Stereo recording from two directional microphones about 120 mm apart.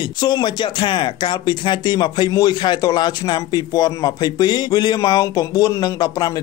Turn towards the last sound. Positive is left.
turn(degrees=30)  # may be behind; listen again after turning